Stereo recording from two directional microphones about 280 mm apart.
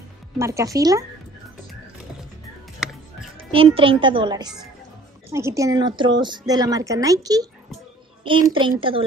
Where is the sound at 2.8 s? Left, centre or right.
Centre.